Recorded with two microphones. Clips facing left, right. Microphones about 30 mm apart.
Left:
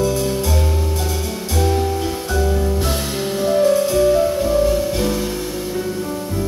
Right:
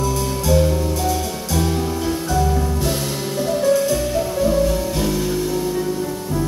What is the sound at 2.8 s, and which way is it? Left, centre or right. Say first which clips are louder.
Music: left 1 dB; left.